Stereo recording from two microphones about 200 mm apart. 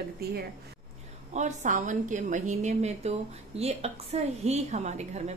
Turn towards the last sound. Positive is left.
turn(degrees=-35)  # may be behind; listen again after turning